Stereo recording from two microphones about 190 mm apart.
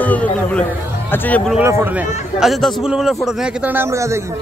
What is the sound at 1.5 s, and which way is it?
A man's voice, 10° right (ahead or behind).